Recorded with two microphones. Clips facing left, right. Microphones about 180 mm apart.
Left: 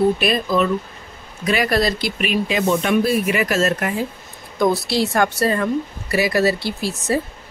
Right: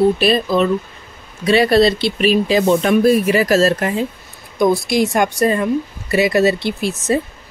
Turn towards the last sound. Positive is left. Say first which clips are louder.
# right 3 dB
turn(degrees=-20)  # may be behind; listen again after turning